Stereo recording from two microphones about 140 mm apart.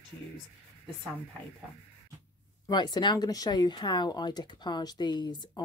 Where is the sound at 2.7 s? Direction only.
30° left (ahead or behind).